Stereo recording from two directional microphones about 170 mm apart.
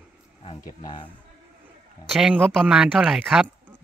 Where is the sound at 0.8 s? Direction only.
25° left (ahead or behind).